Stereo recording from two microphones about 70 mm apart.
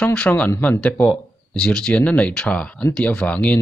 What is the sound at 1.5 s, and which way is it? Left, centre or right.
Speech, centre.